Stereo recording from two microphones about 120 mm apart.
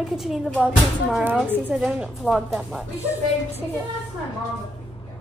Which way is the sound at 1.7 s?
10° right (ahead or behind).